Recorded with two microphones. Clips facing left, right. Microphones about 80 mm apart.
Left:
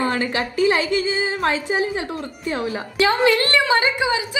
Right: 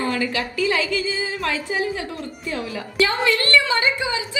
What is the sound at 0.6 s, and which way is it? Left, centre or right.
A woman's voice, left.